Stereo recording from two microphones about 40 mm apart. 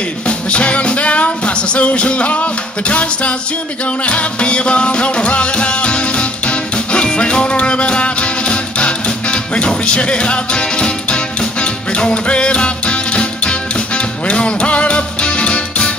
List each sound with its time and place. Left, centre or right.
0.3 s music: left